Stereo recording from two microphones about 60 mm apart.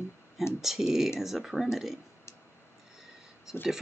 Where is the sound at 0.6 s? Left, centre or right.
Centre.